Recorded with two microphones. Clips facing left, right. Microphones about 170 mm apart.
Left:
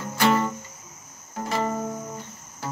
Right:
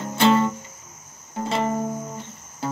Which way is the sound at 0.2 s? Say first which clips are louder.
Right 4 dB; 25° right (ahead or behind).